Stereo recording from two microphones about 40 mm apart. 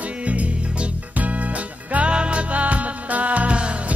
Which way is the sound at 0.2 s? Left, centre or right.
Right.